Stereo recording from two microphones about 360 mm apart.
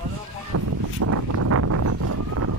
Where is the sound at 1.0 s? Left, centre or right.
Right.